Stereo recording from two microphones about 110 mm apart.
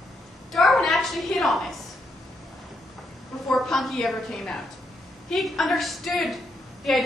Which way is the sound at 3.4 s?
5° left (ahead or behind).